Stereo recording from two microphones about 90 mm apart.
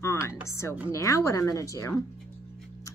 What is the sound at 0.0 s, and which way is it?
Music, 30° left (ahead or behind).